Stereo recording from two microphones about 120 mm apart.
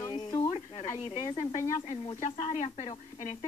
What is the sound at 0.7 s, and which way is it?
Speech, 60° left (ahead or behind).